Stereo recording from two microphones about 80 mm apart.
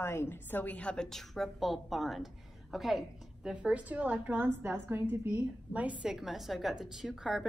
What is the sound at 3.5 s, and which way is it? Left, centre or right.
A woman's voice, centre.